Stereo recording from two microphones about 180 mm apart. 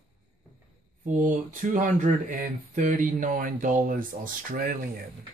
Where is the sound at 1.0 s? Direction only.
45° right (ahead or behind).